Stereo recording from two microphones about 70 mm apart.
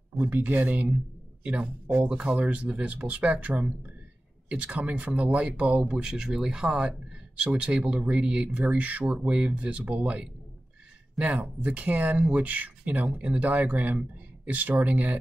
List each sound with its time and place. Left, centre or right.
0.2 s speech: right